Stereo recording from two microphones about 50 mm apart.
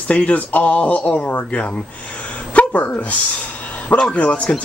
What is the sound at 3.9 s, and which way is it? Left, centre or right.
Speech, left.